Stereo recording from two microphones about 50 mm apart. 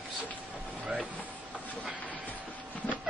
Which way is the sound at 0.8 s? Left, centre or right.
Right.